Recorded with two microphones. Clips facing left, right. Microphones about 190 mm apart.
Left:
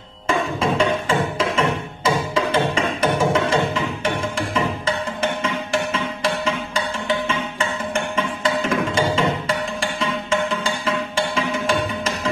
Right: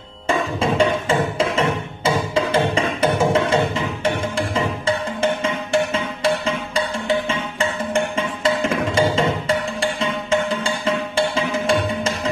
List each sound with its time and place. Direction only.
0.6 s music: 30° right (ahead or behind)